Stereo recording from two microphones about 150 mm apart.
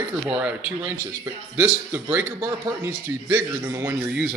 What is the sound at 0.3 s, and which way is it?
Speech, 10° right (ahead or behind).